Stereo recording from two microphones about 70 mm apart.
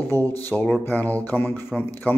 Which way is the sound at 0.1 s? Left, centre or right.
Left.